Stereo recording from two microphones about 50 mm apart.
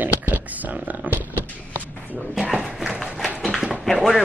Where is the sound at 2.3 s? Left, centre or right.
Centre.